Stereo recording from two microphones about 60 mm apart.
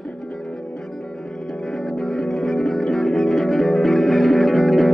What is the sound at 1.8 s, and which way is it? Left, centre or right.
Music, centre.